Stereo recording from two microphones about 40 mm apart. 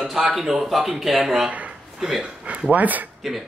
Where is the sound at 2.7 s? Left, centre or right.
Right.